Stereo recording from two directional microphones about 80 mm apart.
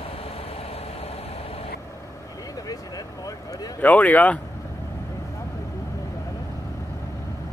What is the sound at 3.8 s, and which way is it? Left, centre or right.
Speech, centre.